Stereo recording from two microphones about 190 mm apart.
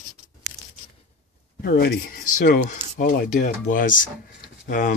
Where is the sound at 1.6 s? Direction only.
55° left (ahead or behind).